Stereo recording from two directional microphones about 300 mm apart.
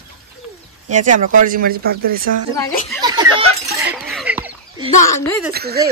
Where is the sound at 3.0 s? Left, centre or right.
Centre.